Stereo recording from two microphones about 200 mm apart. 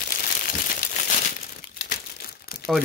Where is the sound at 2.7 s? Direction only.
Centre (ahead or behind).